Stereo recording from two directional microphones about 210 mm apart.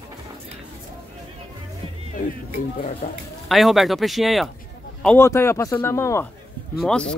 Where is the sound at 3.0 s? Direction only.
40° left (ahead or behind).